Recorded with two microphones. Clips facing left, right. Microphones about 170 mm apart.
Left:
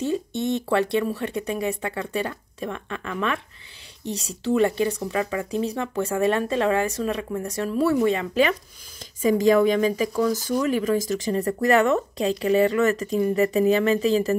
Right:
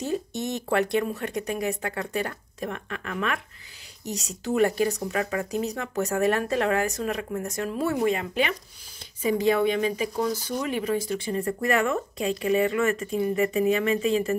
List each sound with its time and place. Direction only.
0.0 s speech: 25° left (ahead or behind)